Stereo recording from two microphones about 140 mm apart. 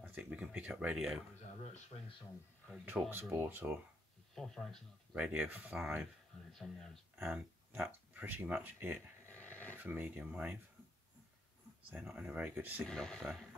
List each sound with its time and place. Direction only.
0.0 s speech: 10° right (ahead or behind)
2.8 s speech: 15° right (ahead or behind)
4.4 s speech: centre (ahead or behind)
5.1 s speech: 10° right (ahead or behind)
7.2 s speech: 15° right (ahead or behind)
9.3 s a sound: 10° left (ahead or behind)
9.8 s speech: 15° right (ahead or behind)
11.9 s speech: 5° right (ahead or behind)
12.8 s speech: 5° left (ahead or behind)